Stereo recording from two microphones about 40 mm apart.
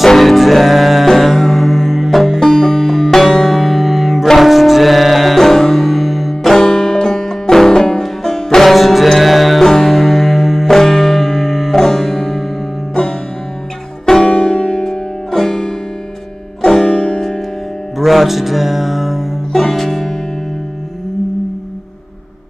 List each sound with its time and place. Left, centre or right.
0.0 s music: centre
6.4 s music: centre
8.6 s music: centre
9.6 s music: centre
10.7 s music: centre
11.7 s music: centre
14.0 s music: centre
14.9 s music: centre
17.9 s music: centre
19.5 s music: centre